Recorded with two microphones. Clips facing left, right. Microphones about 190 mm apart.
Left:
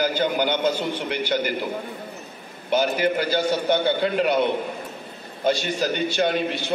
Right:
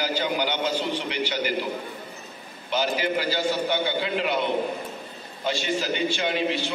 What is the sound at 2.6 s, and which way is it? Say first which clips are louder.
A man's voice: left 4 dB; 50° left (ahead or behind).